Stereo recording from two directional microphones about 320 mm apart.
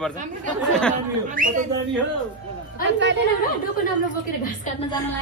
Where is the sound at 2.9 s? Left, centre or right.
Right.